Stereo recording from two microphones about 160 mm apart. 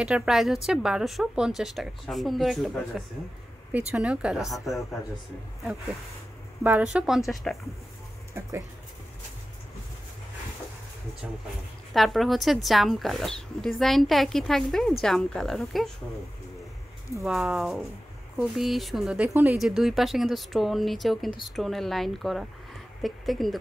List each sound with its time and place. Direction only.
0.0 s speech: 5° right (ahead or behind)
6.6 s speech: 10° right (ahead or behind)
8.4 s speech: 15° right (ahead or behind)
11.9 s speech: centre (ahead or behind)
17.2 s speech: 5° right (ahead or behind)